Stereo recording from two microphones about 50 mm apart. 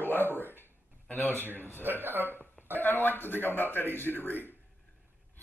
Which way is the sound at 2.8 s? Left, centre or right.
Left.